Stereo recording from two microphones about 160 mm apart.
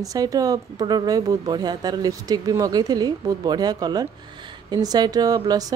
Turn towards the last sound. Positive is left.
turn(degrees=-25)  # may be behind; listen again after turning